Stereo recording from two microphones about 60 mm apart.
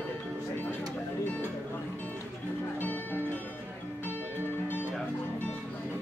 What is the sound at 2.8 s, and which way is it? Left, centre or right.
Music, left.